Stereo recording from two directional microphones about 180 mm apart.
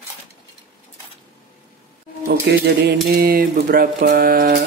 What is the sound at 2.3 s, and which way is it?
Speech, 65° right (ahead or behind).